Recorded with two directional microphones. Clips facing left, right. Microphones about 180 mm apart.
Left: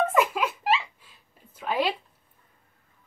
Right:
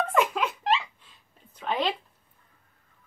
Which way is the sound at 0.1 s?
5° left (ahead or behind).